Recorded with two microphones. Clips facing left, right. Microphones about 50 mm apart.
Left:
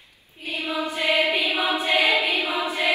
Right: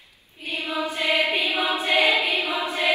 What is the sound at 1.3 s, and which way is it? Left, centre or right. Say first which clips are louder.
Choir: left 1 dB; left.